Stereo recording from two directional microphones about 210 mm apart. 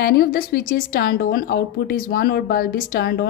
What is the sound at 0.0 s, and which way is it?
A woman's voice, 50° left (ahead or behind).